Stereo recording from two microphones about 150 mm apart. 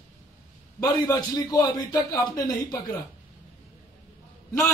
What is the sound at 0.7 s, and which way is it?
A man's voice, 25° left (ahead or behind).